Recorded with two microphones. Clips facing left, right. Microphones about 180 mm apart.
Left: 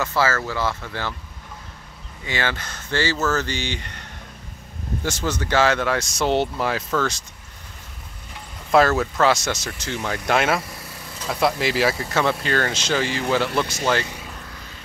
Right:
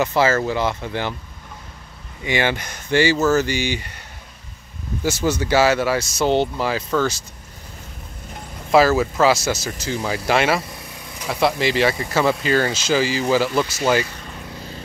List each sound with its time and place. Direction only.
0.0 s speech: 20° right (ahead or behind)
2.2 s speech: 15° right (ahead or behind)
5.0 s speech: 10° right (ahead or behind)
8.7 s speech: 5° right (ahead or behind)
10.6 s vehicle: 20° right (ahead or behind)
11.3 s speech: centre (ahead or behind)
14.0 s vehicle: 10° left (ahead or behind)
14.4 s vehicle: 25° right (ahead or behind)